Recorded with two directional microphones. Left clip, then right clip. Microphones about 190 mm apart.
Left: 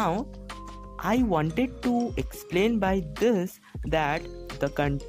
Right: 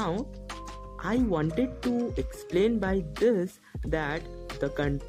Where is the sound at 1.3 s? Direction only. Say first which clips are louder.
Left 2 dB; 35° left (ahead or behind).